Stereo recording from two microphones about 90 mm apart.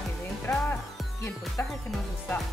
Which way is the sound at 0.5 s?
25° left (ahead or behind).